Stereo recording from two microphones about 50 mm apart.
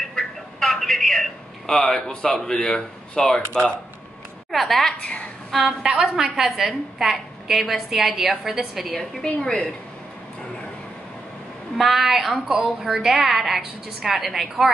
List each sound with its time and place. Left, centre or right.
0.1 s a sound: centre
2.2 s speech: centre
4.5 s a woman's voice: centre
5.0 s a woman's voice: left
5.6 s a woman's voice: centre
11.7 s a woman's voice: centre